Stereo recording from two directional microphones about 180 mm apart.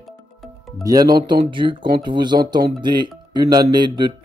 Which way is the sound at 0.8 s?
20° right (ahead or behind).